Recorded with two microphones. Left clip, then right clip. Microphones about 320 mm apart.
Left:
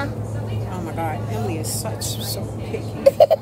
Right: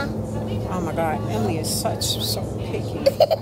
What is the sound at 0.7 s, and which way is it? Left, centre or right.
Speech, centre.